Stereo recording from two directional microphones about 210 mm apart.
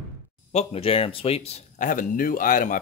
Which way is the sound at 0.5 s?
25° left (ahead or behind).